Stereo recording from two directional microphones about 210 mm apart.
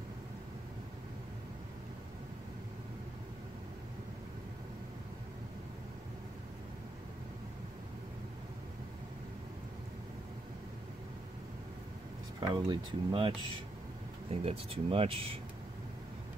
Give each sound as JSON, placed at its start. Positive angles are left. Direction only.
{"t": 12.4, "sound": "speech", "side_deg": -20}
{"t": 14.3, "sound": "speech", "side_deg": -25}